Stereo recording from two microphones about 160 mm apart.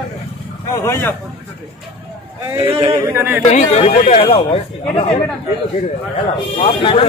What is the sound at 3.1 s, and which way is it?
Speech, 10° right (ahead or behind).